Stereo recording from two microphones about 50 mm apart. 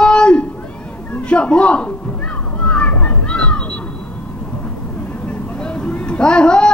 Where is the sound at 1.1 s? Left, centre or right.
Left.